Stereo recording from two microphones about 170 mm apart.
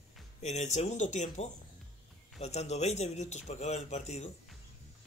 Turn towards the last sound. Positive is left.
turn(degrees=40)  # may be behind; listen again after turning